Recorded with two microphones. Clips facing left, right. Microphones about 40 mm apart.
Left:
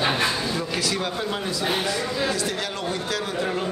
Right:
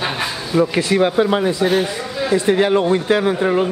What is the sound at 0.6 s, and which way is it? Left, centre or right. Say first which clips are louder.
Speech: right 11 dB; right.